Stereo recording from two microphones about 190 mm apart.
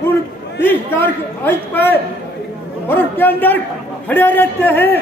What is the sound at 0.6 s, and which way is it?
A man's voice, 10° left (ahead or behind).